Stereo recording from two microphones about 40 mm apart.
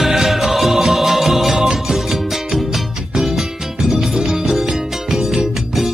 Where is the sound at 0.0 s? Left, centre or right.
Centre.